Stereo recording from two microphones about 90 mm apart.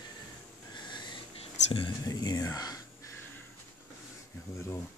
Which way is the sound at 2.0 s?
45° left (ahead or behind).